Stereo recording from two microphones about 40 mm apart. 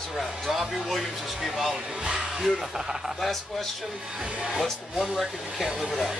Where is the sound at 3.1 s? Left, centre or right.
Centre.